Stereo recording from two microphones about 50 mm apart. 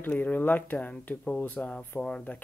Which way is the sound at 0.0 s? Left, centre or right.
Left.